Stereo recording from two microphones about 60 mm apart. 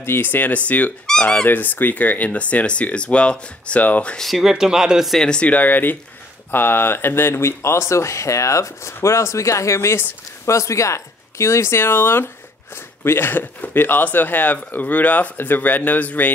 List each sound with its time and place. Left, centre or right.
0.0 s speech: left
1.0 s speech: centre
1.3 s speech: left
4.4 s speech: centre
5.2 s speech: centre
5.5 s speech: left